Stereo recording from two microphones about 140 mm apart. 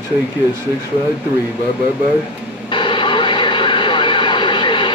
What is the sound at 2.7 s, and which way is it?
Radio, 35° left (ahead or behind).